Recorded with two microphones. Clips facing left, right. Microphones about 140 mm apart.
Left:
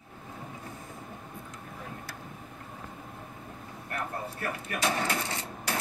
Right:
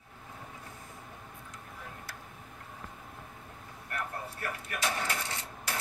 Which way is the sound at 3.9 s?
20° left (ahead or behind).